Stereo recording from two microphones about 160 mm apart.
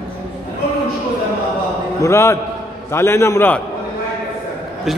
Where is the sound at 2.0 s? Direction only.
15° left (ahead or behind).